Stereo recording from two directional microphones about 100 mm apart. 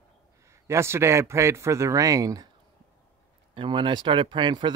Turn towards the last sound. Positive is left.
turn(degrees=-50)  # may be behind; listen again after turning